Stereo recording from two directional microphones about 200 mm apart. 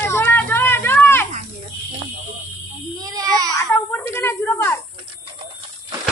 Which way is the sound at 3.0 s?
20° right (ahead or behind).